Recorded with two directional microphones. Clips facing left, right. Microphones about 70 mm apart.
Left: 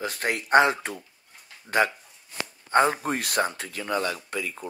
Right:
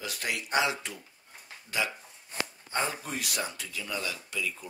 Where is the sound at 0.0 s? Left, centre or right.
Left.